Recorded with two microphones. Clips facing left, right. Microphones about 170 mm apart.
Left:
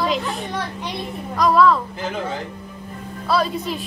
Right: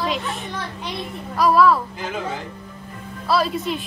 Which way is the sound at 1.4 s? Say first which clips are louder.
Even; 5° right (ahead or behind).